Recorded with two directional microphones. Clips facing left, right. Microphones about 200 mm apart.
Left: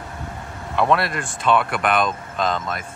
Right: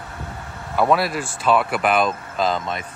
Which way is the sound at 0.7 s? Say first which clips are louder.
Right 1 dB; 5° right (ahead or behind).